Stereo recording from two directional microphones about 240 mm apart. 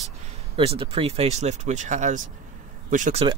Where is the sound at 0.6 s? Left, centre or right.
Right.